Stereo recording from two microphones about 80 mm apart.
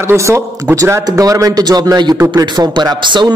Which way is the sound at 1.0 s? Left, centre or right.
Right.